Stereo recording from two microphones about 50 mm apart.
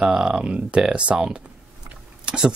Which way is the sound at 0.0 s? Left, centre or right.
Centre.